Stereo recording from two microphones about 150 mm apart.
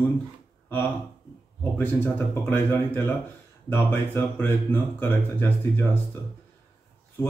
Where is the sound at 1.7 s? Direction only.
15° left (ahead or behind).